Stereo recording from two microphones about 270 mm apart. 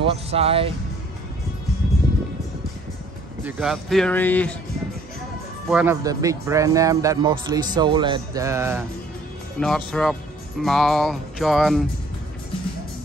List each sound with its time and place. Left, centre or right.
0.0 s speech: right
3.4 s music: centre
5.7 s speech: centre
9.6 s music: centre